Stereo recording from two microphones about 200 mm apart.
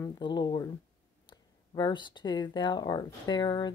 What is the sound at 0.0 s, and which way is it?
Speech, 20° left (ahead or behind).